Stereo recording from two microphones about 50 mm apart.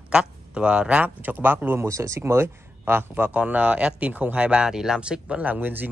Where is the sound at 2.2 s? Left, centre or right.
Right.